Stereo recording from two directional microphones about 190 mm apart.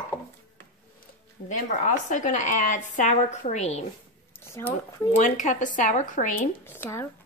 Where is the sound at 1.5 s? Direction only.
40° left (ahead or behind).